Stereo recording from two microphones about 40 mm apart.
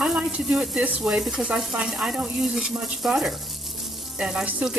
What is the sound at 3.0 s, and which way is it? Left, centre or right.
Frying, centre.